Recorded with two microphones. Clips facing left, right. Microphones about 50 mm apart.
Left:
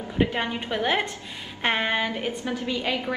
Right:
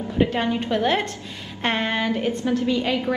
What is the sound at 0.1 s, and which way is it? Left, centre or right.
A woman's voice, centre.